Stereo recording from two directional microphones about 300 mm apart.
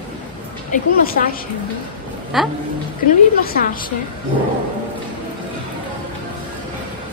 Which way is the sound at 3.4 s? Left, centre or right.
Left.